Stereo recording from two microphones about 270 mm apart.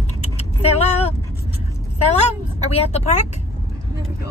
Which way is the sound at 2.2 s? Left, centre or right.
Left.